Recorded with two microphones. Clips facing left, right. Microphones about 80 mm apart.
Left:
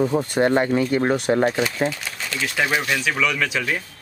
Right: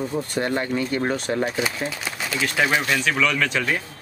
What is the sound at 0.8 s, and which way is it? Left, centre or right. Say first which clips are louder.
Speech: left 4 dB; centre.